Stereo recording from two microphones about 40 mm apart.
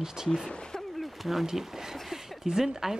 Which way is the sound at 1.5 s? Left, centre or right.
Centre.